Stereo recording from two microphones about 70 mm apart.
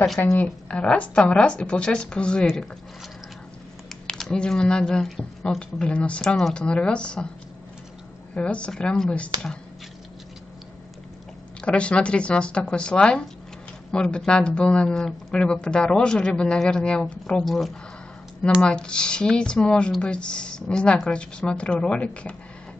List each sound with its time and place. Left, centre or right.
0.4 s speech: centre
4.1 s speech: centre
8.4 s speech: centre
11.6 s speech: centre
17.5 s speech: centre
18.6 s speech: centre